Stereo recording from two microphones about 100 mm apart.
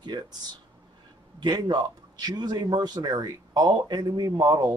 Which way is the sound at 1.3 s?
50° right (ahead or behind).